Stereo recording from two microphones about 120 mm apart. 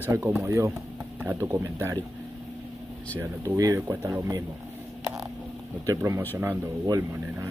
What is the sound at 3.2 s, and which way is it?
Speech, 25° right (ahead or behind).